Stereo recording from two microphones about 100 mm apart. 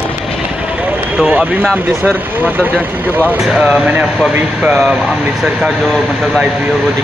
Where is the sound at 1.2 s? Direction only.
15° right (ahead or behind).